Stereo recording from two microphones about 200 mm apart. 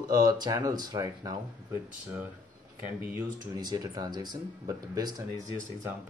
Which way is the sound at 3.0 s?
10° right (ahead or behind).